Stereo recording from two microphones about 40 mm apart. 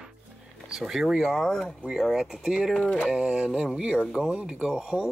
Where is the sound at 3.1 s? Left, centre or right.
Right.